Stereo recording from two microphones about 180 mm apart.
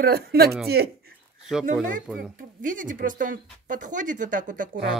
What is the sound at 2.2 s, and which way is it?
Speech, 45° right (ahead or behind).